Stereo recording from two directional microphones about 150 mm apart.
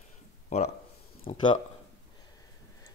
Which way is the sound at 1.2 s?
35° left (ahead or behind).